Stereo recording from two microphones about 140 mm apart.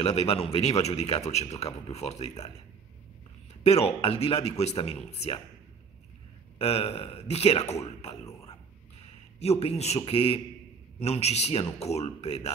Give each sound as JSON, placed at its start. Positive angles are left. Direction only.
{"t": 0.0, "sound": "a man's voice", "side_deg": 45}
{"t": 3.6, "sound": "a man's voice", "side_deg": 45}
{"t": 6.6, "sound": "a man's voice", "side_deg": 45}